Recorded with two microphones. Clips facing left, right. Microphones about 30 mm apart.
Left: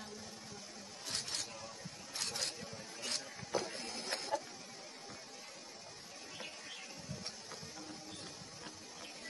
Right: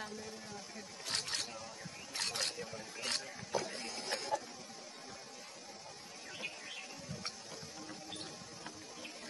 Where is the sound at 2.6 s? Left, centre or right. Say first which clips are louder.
Right 3 dB; centre.